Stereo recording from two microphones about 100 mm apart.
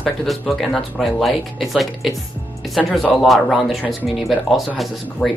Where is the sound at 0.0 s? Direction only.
Centre (ahead or behind).